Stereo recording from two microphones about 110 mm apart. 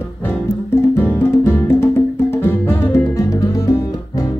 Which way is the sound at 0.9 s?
20° left (ahead or behind).